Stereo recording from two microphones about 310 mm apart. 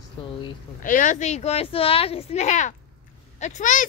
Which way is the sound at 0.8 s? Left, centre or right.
Left.